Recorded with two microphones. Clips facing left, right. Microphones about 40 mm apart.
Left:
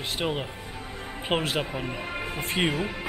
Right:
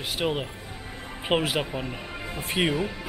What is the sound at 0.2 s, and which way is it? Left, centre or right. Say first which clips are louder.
Speech: right 3 dB; centre.